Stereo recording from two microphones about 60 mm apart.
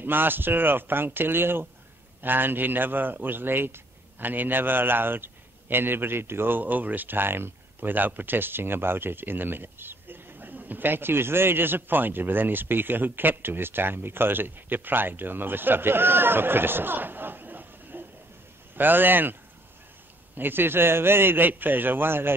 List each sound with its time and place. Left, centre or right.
0.0 s speech: right
20.3 s speech: right